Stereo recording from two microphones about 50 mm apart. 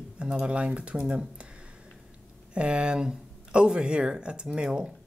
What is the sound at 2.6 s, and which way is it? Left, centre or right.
Speech, right.